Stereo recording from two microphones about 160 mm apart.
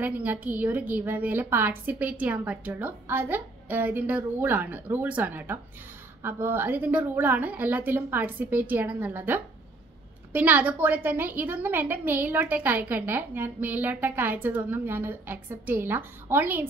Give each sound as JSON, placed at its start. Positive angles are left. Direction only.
{"t": 0.0, "sound": "a woman's voice", "side_deg": -10}